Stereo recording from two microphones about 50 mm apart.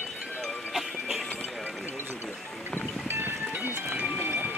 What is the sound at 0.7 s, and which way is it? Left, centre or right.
Music, centre.